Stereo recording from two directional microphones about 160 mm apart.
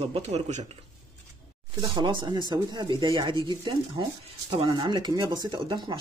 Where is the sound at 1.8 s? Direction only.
30° right (ahead or behind).